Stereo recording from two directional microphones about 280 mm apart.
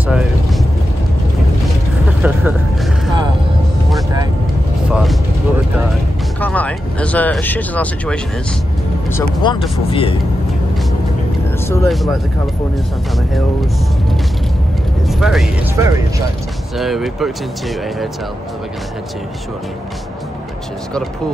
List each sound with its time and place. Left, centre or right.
0.1 s boat: centre
2.2 s music: centre
4.9 s a sound: centre
6.4 s a sound: centre
9.4 s speech: centre
11.6 s speech: centre
15.0 s speech: centre